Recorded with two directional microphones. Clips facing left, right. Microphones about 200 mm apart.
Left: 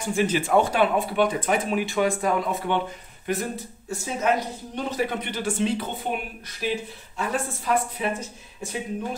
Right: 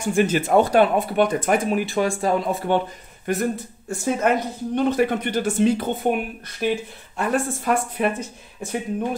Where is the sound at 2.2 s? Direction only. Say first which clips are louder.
Right 3 dB; 30° right (ahead or behind).